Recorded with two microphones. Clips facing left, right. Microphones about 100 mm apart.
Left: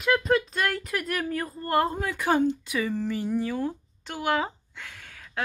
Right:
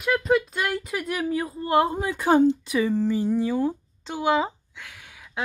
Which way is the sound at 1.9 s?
15° right (ahead or behind).